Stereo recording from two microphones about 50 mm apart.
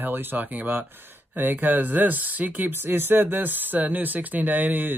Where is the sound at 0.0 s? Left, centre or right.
Right.